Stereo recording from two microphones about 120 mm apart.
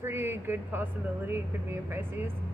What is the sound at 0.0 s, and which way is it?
Speech, 20° right (ahead or behind).